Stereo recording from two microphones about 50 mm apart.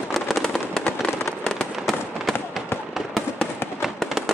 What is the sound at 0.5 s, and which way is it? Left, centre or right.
Fireworks, centre.